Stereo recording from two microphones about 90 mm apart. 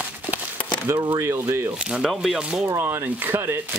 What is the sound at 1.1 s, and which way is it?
Speech, 30° right (ahead or behind).